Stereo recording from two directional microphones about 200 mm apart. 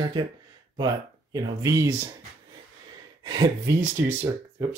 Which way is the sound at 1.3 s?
15° right (ahead or behind).